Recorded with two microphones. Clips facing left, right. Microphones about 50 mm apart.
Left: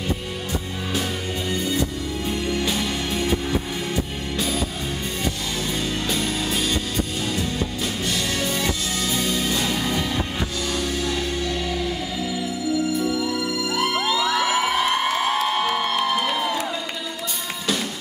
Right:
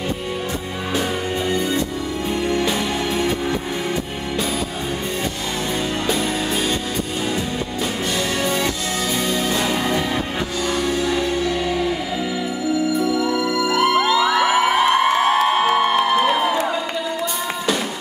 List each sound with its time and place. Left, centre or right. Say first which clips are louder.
1.5 s music: even; centre
6.0 s music: right 4 dB; centre
8.4 s music: right 3 dB; centre
13.1 s music: right 5 dB; right
13.5 s music: right 6 dB; right
13.7 s music: right 6 dB; centre